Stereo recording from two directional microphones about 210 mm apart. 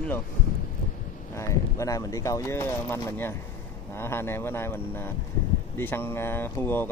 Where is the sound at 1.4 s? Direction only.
15° left (ahead or behind).